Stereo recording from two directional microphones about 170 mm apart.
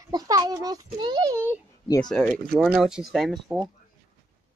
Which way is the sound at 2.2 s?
10° left (ahead or behind).